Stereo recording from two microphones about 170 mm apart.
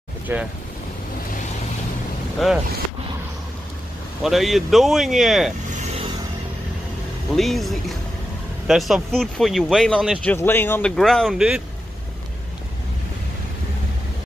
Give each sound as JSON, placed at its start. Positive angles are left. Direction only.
{"t": 0.3, "sound": "speech", "side_deg": -15}
{"t": 2.3, "sound": "speech", "side_deg": 0}
{"t": 4.2, "sound": "speech", "side_deg": 0}
{"t": 7.3, "sound": "speech", "side_deg": 0}
{"t": 10.2, "sound": "speech", "side_deg": 10}